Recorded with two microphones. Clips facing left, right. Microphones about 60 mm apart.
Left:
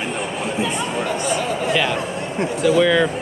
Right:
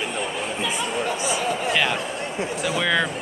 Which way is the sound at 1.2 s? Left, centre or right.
Left.